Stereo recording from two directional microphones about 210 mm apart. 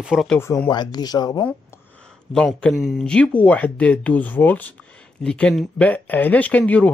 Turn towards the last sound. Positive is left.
turn(degrees=5)  # may be behind; listen again after turning